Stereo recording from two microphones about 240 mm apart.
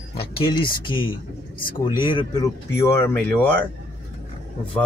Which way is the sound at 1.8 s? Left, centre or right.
Centre.